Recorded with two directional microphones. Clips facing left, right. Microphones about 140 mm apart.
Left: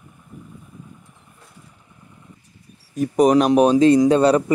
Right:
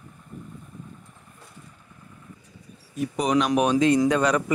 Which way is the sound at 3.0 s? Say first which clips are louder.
Left 8 dB; 45° left (ahead or behind).